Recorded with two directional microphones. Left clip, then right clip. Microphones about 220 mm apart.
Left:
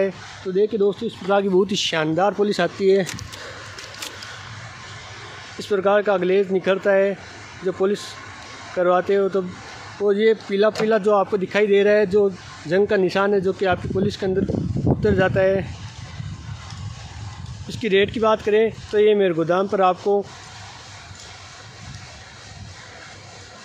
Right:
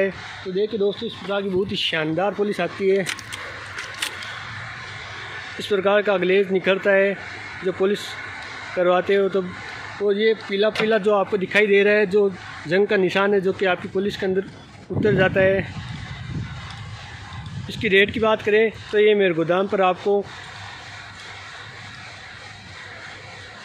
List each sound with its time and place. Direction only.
0.6 s speech: 30° left (ahead or behind)
5.6 s speech: 5° left (ahead or behind)
10.0 s speech: 20° left (ahead or behind)
10.9 s speech: 5° left (ahead or behind)
15.0 s speech: 5° left (ahead or behind)
17.7 s speech: 10° left (ahead or behind)